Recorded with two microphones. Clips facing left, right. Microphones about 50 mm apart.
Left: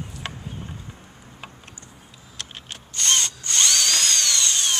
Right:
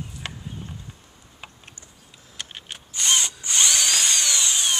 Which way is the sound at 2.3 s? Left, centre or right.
Centre.